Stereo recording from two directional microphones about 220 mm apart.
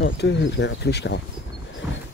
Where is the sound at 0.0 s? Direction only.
50° left (ahead or behind).